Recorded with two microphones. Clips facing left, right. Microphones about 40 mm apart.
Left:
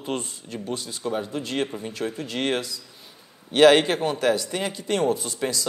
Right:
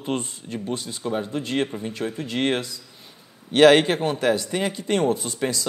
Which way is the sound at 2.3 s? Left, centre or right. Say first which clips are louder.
Right 3 dB; right.